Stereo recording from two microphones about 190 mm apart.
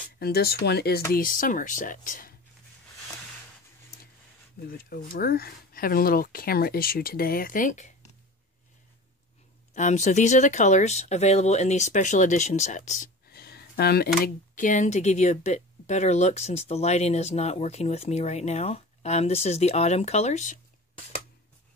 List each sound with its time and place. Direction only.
0.2 s speech: 55° left (ahead or behind)
1.1 s speech: 45° left (ahead or behind)
4.6 s speech: 50° left (ahead or behind)
9.8 s speech: 40° left (ahead or behind)
13.3 s speech: 55° left (ahead or behind); by 20.6 s 40° left (ahead or behind)